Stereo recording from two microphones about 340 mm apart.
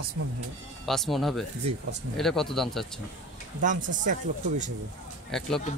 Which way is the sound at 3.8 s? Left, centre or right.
Right.